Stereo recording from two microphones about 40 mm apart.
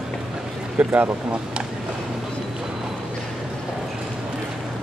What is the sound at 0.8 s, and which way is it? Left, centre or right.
Speech, right.